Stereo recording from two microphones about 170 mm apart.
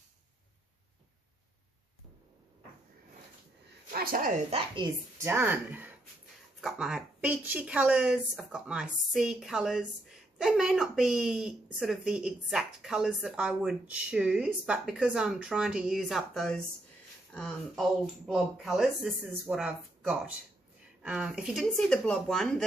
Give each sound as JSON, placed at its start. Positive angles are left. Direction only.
{"t": 3.9, "sound": "a sound", "side_deg": -60}
{"t": 4.5, "sound": "a woman's voice", "side_deg": -30}
{"t": 5.2, "sound": "a woman's voice", "side_deg": -15}